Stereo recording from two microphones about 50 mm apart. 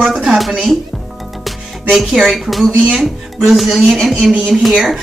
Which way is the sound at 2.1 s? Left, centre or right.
Centre.